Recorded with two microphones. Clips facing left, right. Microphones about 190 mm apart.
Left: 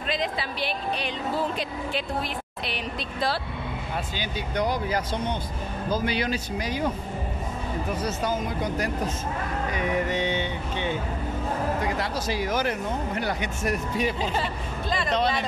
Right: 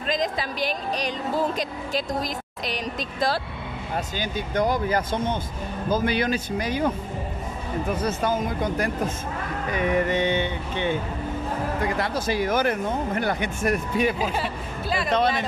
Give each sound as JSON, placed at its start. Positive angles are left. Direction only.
{"t": 0.1, "sound": "speech", "side_deg": -40}
{"t": 8.0, "sound": "speech", "side_deg": -55}
{"t": 9.8, "sound": "vehicle", "side_deg": -55}
{"t": 12.0, "sound": "speech", "side_deg": -55}
{"t": 14.2, "sound": "speech", "side_deg": -5}
{"t": 15.0, "sound": "speech", "side_deg": -55}